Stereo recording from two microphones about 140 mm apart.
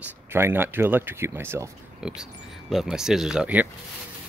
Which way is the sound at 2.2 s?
Centre (ahead or behind).